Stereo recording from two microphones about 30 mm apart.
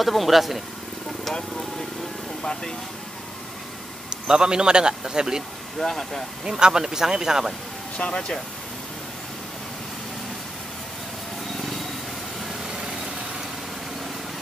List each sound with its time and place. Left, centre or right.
0.0 s speech: centre
4.1 s a man's voice: right
5.8 s speech: centre
6.4 s a man's voice: right
8.0 s speech: left